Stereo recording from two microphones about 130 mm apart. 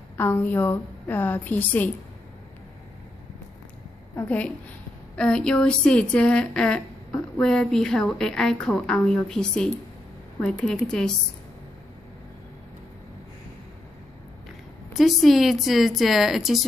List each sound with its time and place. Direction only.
0.2 s a woman's voice: 15° left (ahead or behind)
4.1 s a woman's voice: 15° left (ahead or behind)
10.9 s a woman's voice: 5° left (ahead or behind)
14.9 s a woman's voice: centre (ahead or behind)